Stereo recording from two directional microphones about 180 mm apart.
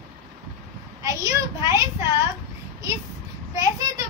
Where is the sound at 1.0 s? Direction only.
20° right (ahead or behind).